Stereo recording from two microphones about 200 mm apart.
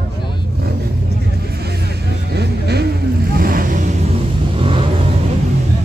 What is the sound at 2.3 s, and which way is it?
Vehicle, 55° right (ahead or behind).